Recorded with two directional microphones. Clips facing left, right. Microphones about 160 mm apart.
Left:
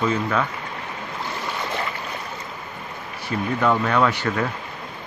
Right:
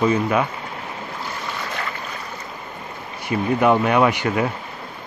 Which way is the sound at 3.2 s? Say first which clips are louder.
Right 4 dB; 15° right (ahead or behind).